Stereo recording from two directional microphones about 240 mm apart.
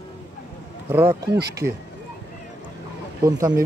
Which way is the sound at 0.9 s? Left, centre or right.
Centre.